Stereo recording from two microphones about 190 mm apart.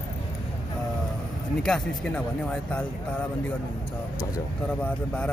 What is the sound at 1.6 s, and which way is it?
Speech, 5° left (ahead or behind).